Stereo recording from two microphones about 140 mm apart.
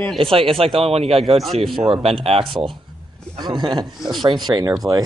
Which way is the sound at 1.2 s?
Centre (ahead or behind).